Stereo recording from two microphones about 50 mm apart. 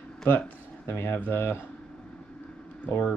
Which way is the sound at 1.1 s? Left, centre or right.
Left.